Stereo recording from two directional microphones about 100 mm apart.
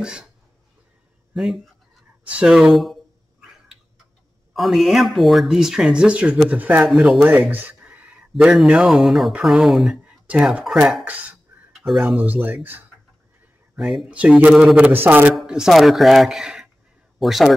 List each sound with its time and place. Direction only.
0.0 s speech: 10° right (ahead or behind)
1.3 s speech: centre (ahead or behind)
2.3 s a sound: 5° right (ahead or behind)
4.6 s speech: centre (ahead or behind); by 6.9 s 15° right (ahead or behind)
6.9 s speech: 5° right (ahead or behind)
7.2 s speech: 15° right (ahead or behind); by 10.1 s centre (ahead or behind)
10.3 s speech: 10° right (ahead or behind)
11.7 s speech: centre (ahead or behind)
12.2 s speech: 15° right (ahead or behind)
13.7 s speech: centre (ahead or behind)
14.1 s speech: 15° right (ahead or behind)
15.3 s speech: 5° right (ahead or behind)